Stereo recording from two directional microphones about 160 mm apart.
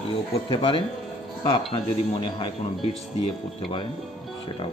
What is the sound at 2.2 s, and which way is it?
Speech, 30° left (ahead or behind).